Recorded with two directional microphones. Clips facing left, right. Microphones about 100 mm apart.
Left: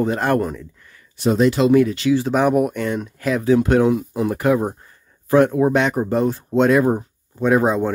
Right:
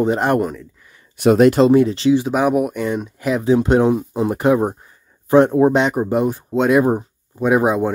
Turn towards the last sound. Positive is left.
turn(degrees=-15)  # may be behind; listen again after turning